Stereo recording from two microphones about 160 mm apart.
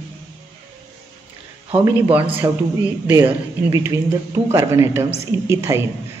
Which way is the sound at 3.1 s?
15° right (ahead or behind).